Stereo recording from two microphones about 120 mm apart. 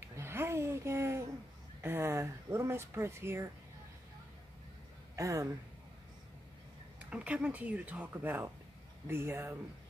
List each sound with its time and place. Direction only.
0.1 s a sound: 20° right (ahead or behind)
5.1 s speech: 25° right (ahead or behind)
7.1 s speech: 10° right (ahead or behind)